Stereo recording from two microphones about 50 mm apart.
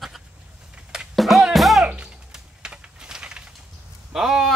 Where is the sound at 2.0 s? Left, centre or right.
Centre.